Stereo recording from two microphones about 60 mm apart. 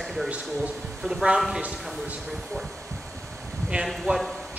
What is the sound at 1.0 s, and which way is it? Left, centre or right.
Speech, centre.